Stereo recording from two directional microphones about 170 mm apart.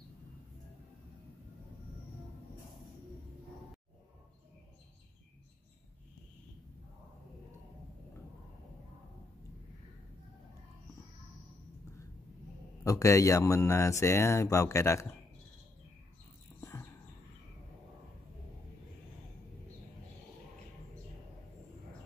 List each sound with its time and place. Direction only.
12.8 s speech: 20° left (ahead or behind)